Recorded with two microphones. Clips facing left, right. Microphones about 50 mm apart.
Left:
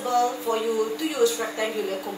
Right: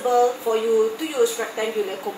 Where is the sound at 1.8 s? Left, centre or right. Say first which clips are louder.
Right 3 dB; centre.